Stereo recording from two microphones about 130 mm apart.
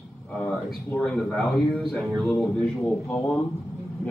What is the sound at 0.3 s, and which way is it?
A man's voice, 5° left (ahead or behind).